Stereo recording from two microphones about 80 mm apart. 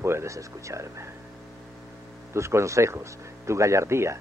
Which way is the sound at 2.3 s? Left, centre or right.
Right.